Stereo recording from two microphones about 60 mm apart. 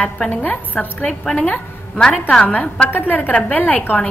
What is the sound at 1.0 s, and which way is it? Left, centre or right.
A woman's voice, centre.